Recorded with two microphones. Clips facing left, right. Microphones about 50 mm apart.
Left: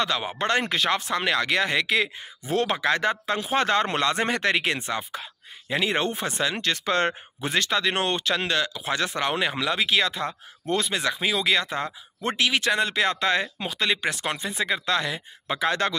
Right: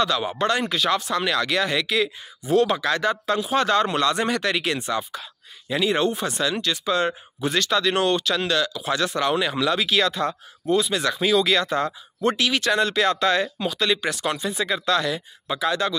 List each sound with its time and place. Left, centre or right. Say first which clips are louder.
0.0 s speech: right 4 dB; left
6.6 s speech: even; left
7.4 s speech: right 2 dB; left
15.4 s speech: right 1 dB; left